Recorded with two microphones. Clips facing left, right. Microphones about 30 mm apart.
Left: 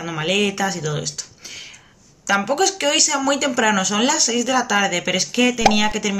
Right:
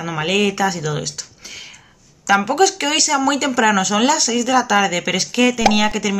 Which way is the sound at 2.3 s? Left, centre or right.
Centre.